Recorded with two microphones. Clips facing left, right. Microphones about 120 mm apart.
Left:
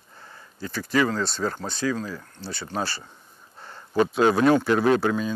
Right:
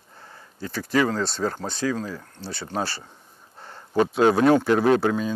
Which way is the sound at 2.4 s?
65° right (ahead or behind).